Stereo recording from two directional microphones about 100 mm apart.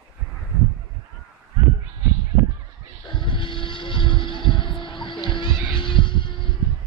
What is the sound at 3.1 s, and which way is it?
Music, 55° left (ahead or behind).